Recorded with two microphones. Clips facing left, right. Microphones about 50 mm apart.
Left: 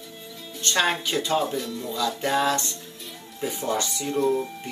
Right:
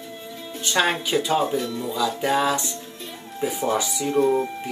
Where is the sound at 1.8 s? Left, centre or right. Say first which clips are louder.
Right 1 dB; centre.